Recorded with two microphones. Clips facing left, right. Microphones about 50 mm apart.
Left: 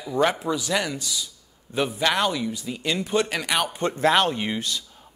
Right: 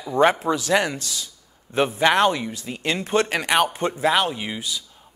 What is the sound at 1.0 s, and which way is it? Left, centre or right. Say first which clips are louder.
Speech: left 1 dB; right.